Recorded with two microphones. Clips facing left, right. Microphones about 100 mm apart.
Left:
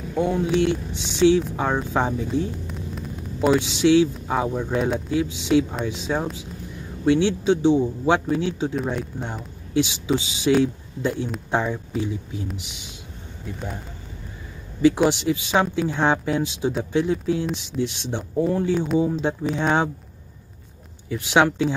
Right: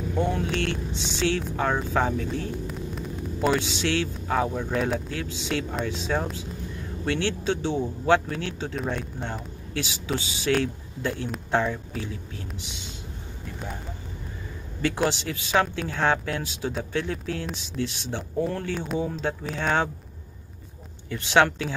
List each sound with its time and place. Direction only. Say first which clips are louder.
0.1 s a man's voice: left 6 dB; 10° left (ahead or behind)
2.6 s a man's voice: even; centre (ahead or behind)
14.8 s a man's voice: left 7 dB; 10° left (ahead or behind)
21.1 s a man's voice: left 2 dB; 10° left (ahead or behind)